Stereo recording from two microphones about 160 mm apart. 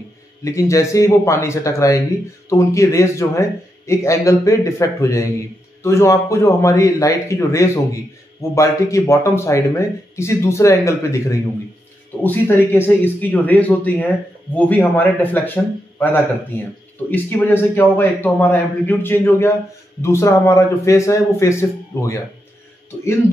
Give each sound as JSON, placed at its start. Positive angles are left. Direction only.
{"t": 0.4, "sound": "a man's voice", "side_deg": 20}